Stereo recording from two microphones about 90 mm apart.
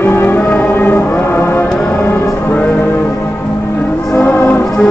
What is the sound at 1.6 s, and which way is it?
Music, 5° left (ahead or behind).